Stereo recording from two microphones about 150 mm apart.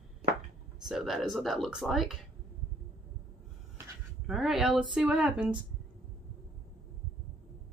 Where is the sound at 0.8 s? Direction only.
Centre (ahead or behind).